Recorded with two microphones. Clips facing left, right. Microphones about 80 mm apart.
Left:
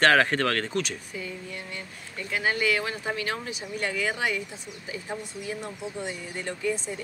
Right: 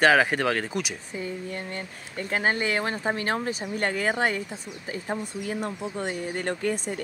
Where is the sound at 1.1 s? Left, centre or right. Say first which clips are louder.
Right 4 dB; right.